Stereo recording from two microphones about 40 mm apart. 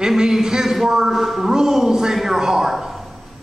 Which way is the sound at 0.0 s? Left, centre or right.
Centre.